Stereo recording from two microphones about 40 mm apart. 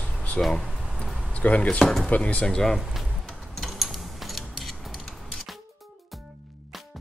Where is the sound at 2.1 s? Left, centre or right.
Left.